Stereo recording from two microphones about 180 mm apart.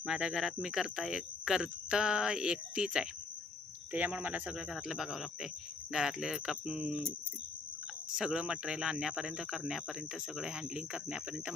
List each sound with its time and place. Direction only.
0.0 s speech: 5° right (ahead or behind)
8.1 s speech: 5° right (ahead or behind)